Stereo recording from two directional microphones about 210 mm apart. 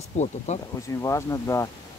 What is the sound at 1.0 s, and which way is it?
Speech, 15° left (ahead or behind).